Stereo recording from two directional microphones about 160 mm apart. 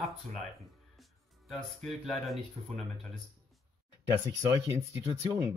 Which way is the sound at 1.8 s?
Centre (ahead or behind).